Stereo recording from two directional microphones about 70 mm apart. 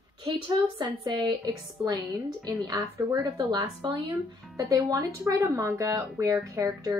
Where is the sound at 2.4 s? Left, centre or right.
Right.